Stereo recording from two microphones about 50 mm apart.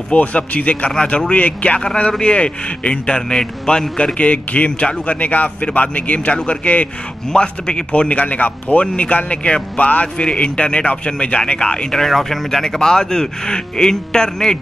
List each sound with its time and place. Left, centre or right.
0.1 s speech: left
7.3 s speech: centre